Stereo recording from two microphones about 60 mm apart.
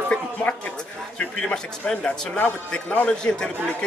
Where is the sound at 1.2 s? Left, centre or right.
Centre.